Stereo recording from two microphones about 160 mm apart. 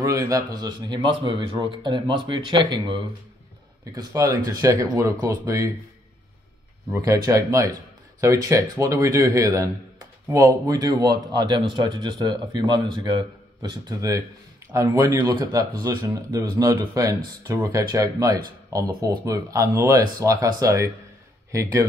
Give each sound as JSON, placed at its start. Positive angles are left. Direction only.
{"t": 0.0, "sound": "a man's voice", "side_deg": -20}
{"t": 6.9, "sound": "a man's voice", "side_deg": -20}
{"t": 20.2, "sound": "a man's voice", "side_deg": -20}